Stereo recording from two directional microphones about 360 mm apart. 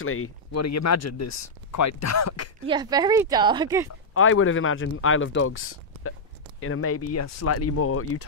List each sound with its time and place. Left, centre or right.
0.0 s speech: left
2.6 s speech: centre
4.1 s speech: left